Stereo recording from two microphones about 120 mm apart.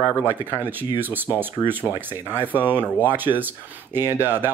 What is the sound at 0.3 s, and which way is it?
Speech, 15° right (ahead or behind).